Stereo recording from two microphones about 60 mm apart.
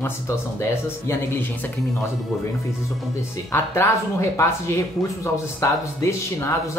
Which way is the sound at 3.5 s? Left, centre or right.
Left.